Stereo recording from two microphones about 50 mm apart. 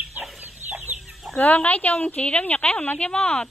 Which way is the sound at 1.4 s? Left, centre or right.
Left.